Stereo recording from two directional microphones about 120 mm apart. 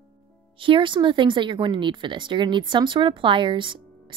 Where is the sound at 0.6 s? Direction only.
45° right (ahead or behind).